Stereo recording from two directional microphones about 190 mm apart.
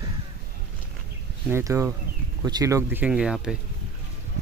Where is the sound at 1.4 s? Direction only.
15° right (ahead or behind).